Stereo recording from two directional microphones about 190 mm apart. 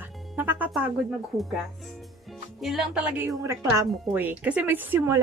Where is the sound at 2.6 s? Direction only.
Centre (ahead or behind).